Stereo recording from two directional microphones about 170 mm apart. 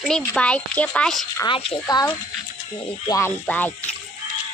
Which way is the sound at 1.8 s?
20° left (ahead or behind).